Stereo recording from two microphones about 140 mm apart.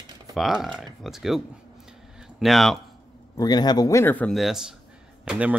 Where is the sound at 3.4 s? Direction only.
30° left (ahead or behind); by 4.3 s 15° left (ahead or behind).